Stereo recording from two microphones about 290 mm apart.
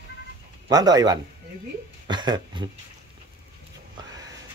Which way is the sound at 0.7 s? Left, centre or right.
Centre.